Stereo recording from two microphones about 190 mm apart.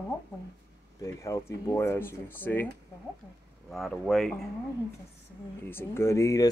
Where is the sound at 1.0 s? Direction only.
20° left (ahead or behind).